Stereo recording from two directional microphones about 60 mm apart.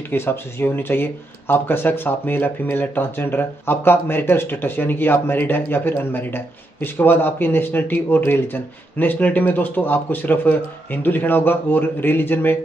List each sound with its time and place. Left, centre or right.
0.1 s speech: left